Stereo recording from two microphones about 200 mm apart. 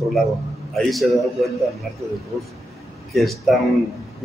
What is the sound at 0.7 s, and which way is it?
Speech, centre (ahead or behind).